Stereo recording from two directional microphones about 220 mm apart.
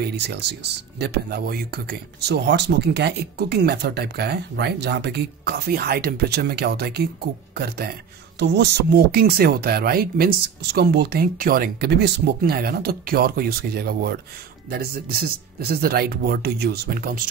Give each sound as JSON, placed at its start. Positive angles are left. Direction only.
{"t": 0.0, "sound": "speech", "side_deg": -50}
{"t": 8.4, "sound": "speech", "side_deg": -50}